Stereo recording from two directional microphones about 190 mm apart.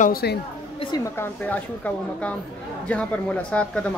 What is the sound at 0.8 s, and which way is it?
A woman's voice, 20° left (ahead or behind).